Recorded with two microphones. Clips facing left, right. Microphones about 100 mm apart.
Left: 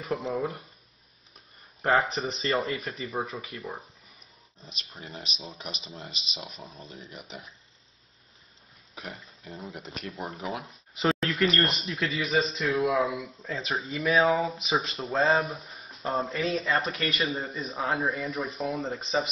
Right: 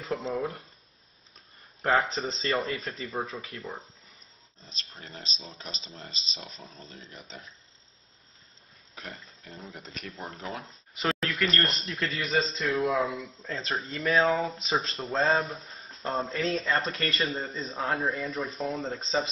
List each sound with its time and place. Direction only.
0.3 s speech: centre (ahead or behind)
2.0 s speech: 15° left (ahead or behind)
8.9 s speech: 10° left (ahead or behind)
11.0 s a sound: centre (ahead or behind)
11.4 s speech: 5° left (ahead or behind)
15.4 s a sound: 15° left (ahead or behind)
16.2 s speech: 15° left (ahead or behind)